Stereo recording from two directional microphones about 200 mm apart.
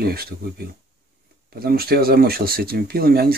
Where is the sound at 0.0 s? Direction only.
50° right (ahead or behind).